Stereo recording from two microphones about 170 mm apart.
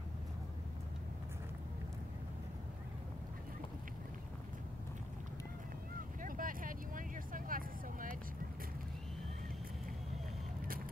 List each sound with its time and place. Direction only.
6.2 s vehicle: 55° right (ahead or behind)